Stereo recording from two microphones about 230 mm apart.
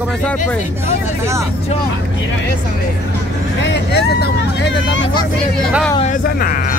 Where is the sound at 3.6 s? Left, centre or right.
Left.